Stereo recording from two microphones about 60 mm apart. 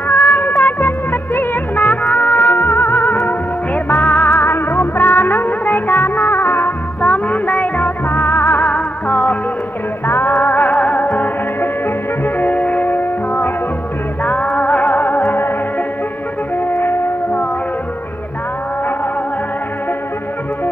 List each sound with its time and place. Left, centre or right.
0.1 s music: left
7.0 s music: left
8.1 s music: left
8.6 s music: left
10.0 s music: left
14.2 s music: left
16.7 s music: left